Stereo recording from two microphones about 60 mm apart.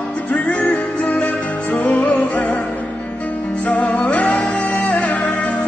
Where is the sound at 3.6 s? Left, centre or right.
Left.